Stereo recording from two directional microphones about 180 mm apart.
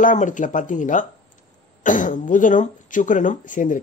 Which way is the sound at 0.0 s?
45° left (ahead or behind).